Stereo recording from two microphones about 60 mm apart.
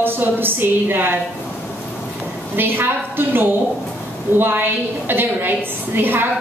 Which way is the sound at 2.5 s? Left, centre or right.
Right.